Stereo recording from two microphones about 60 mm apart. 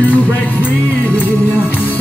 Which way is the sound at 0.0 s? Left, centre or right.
Left.